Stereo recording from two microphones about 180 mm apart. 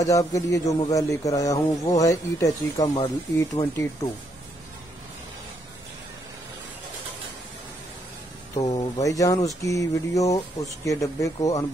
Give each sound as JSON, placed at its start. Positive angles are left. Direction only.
{"t": 0.0, "sound": "a man's voice", "side_deg": 20}
{"t": 8.5, "sound": "a man's voice", "side_deg": 20}
{"t": 9.7, "sound": "a sound", "side_deg": 20}